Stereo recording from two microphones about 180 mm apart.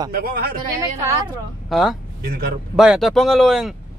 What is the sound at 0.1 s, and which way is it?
Speech, 60° right (ahead or behind).